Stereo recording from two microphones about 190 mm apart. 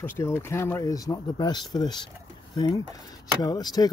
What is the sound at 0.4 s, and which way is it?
Speech, 15° left (ahead or behind).